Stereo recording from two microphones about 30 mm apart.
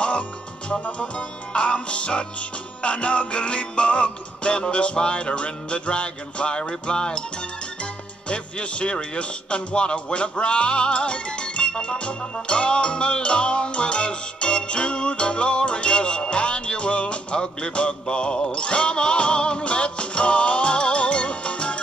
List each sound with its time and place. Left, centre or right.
0.9 s music: left